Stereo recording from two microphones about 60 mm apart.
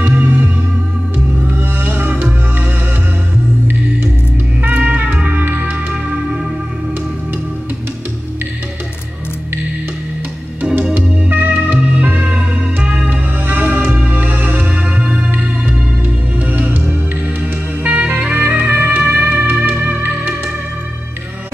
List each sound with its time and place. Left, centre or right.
0.0 s music: right
1.5 s music: right
4.6 s music: right
10.6 s music: right
12.3 s music: centre
13.1 s music: right